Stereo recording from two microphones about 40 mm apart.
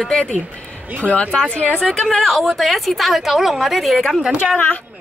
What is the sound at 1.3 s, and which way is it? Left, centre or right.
Speech, left.